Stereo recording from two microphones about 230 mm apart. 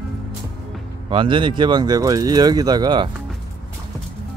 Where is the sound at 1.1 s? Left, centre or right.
Right.